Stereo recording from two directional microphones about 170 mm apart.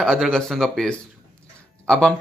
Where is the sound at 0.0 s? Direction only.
Centre (ahead or behind).